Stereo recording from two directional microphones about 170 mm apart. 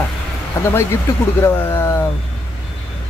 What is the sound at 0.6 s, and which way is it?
Speech, 15° left (ahead or behind).